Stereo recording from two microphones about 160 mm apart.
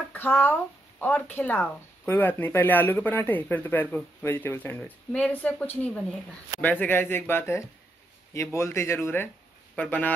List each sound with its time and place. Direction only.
0.1 s speech: 15° left (ahead or behind)